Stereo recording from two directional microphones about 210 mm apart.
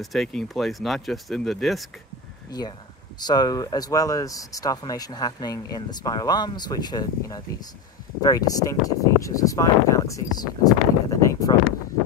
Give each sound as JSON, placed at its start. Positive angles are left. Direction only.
{"t": 0.0, "sound": "speech", "side_deg": 0}
{"t": 2.5, "sound": "speech", "side_deg": 20}